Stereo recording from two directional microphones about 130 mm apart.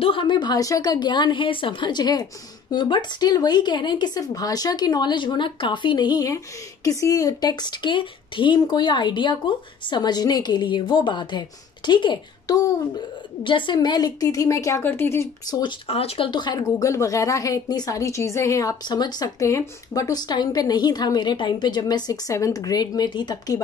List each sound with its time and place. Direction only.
0.0 s a woman's voice: 40° left (ahead or behind); by 15.2 s 20° left (ahead or behind)
15.9 s a woman's voice: 50° left (ahead or behind); by 23.6 s 30° left (ahead or behind)